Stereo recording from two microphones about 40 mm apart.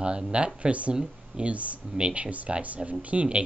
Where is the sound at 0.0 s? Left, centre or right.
Right.